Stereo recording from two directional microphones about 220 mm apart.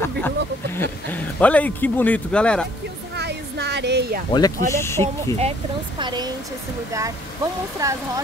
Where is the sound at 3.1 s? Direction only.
50° right (ahead or behind).